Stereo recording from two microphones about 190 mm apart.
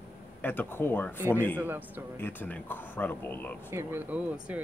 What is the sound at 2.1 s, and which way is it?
Speech, 10° left (ahead or behind).